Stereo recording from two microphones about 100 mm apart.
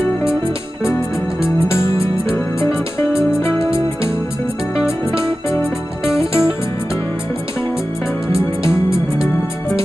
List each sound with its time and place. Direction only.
1.7 s music: 25° left (ahead or behind)
5.2 s music: 25° left (ahead or behind)